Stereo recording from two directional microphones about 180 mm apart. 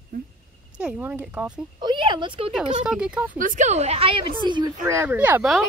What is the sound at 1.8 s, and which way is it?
Speech, 25° right (ahead or behind).